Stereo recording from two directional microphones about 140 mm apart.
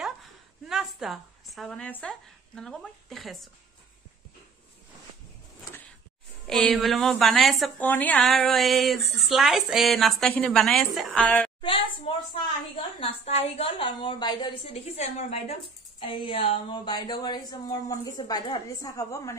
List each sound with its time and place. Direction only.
0.0 s a sound: 5° right (ahead or behind)
6.4 s speech: 5° left (ahead or behind)
7.8 s a woman's voice: 10° left (ahead or behind)
11.6 s a woman's voice: 40° left (ahead or behind)
13.0 s a woman's voice: 50° left (ahead or behind); by 14.5 s 30° left (ahead or behind)
14.7 s a woman's voice: 50° left (ahead or behind); by 19.3 s 20° left (ahead or behind)